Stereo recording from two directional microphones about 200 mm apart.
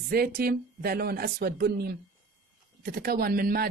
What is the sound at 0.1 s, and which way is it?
Speech, 50° right (ahead or behind).